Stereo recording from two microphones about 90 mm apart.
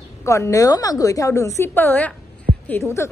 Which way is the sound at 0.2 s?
35° left (ahead or behind).